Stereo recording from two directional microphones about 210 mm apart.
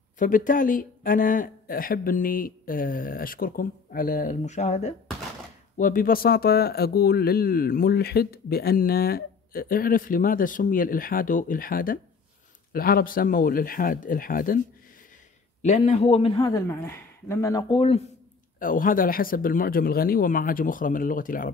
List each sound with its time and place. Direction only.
0.2 s speech: 40° left (ahead or behind)
15.6 s a man's voice: 30° left (ahead or behind)
18.6 s speech: 40° left (ahead or behind)